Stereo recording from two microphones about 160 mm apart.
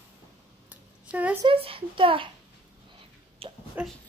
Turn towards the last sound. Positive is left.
turn(degrees=-10)  # may be behind; listen again after turning